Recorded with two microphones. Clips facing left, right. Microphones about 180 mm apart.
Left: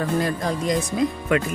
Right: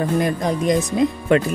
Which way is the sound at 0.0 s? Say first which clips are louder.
Right 3 dB; 20° right (ahead or behind).